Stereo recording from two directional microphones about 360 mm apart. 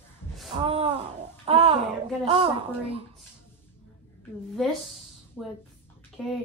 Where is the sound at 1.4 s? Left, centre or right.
Centre.